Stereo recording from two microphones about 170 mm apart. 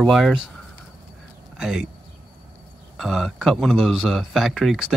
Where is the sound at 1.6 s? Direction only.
5° right (ahead or behind).